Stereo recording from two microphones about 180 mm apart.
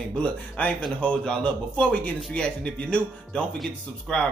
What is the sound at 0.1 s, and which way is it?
Speech, 5° left (ahead or behind).